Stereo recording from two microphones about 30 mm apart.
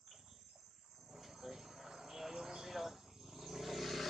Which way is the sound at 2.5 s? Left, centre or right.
Centre.